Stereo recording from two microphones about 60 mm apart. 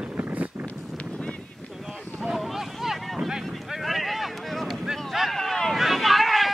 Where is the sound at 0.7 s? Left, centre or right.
Centre.